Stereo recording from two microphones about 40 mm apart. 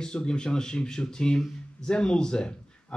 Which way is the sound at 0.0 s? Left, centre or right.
Left.